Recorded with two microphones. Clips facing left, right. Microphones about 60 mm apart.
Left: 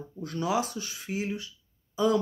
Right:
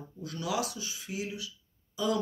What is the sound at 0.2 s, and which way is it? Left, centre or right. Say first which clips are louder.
Speech: left 4 dB; left.